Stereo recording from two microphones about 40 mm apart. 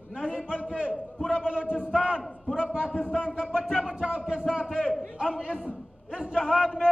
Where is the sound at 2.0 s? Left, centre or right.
Centre.